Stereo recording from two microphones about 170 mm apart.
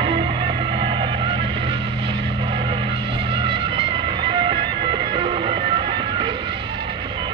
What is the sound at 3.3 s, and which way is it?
Music, 30° right (ahead or behind).